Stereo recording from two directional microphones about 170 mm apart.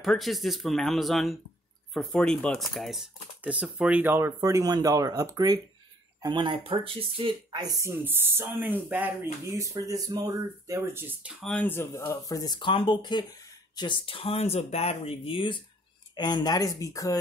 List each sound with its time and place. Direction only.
0.0 s speech: centre (ahead or behind)
11.4 s speech: 10° left (ahead or behind)